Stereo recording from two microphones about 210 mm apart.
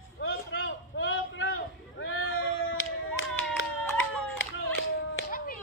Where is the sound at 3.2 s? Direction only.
75° left (ahead or behind).